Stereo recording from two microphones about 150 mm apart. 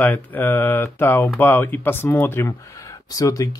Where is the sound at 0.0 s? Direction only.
10° left (ahead or behind).